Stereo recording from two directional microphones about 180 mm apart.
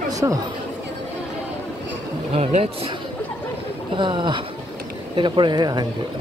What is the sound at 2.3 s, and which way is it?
Speech, 40° right (ahead or behind).